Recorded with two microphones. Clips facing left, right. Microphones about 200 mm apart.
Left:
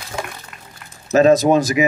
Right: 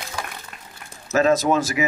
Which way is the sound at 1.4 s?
15° left (ahead or behind).